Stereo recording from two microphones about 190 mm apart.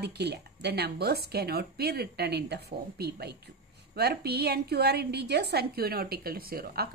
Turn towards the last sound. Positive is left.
turn(degrees=-55)  # may be behind; listen again after turning